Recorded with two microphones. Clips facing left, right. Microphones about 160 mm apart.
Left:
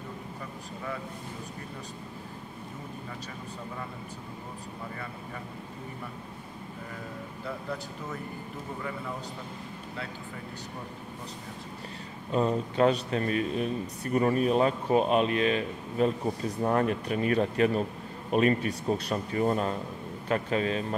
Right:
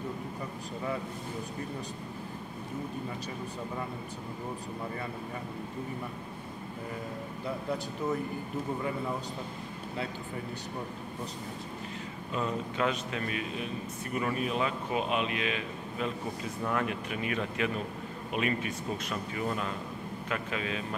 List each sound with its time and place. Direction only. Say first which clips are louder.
12.3 s a man's voice: left 6 dB; 35° left (ahead or behind)